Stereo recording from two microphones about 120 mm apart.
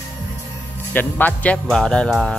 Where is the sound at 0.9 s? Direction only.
15° left (ahead or behind).